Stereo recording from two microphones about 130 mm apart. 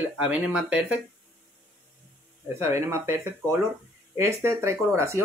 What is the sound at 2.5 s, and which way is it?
Speech, 20° right (ahead or behind).